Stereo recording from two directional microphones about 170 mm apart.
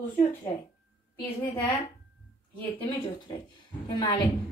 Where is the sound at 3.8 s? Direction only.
25° left (ahead or behind).